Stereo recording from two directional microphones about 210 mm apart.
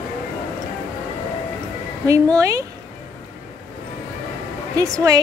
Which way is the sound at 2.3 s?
15° right (ahead or behind).